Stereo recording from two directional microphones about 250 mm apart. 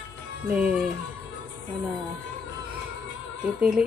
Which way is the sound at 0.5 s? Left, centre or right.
Centre.